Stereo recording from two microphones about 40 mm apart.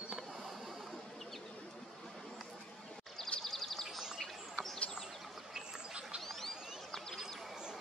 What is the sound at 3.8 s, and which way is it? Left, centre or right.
Bird, centre.